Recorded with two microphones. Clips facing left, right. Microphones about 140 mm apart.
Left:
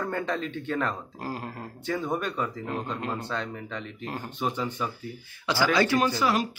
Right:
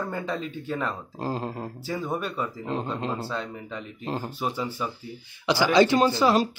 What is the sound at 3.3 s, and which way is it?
Speech, 5° right (ahead or behind).